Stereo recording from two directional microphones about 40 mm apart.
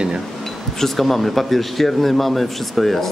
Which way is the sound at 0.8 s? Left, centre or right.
Centre.